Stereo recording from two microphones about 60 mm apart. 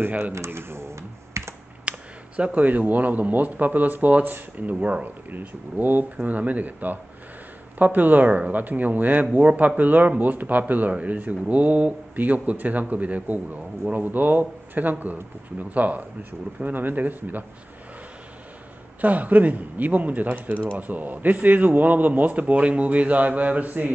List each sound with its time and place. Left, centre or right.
0.0 s speech: right
0.5 s computer keyboard: right
1.9 s speech: right
18.9 s speech: right